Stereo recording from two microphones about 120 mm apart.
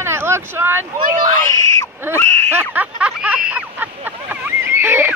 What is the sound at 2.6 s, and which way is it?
Speech, 10° right (ahead or behind).